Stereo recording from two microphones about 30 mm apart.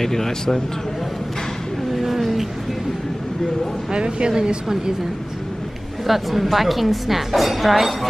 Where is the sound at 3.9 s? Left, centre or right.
Right.